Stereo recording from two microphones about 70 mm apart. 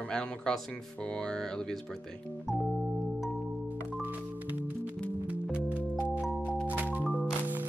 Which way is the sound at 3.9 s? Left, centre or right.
Right.